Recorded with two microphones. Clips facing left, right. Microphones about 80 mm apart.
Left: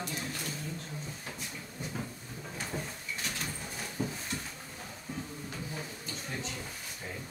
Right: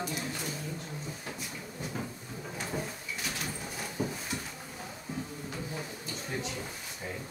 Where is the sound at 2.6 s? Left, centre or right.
Centre.